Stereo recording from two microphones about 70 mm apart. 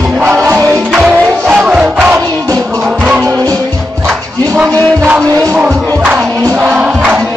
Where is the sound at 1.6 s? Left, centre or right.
Centre.